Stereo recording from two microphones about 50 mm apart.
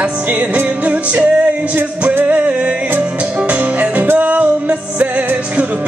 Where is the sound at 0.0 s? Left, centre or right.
Right.